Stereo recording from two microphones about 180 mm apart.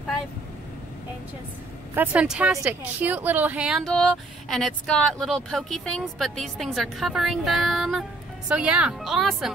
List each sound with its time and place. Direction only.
2.0 s speech: 5° right (ahead or behind)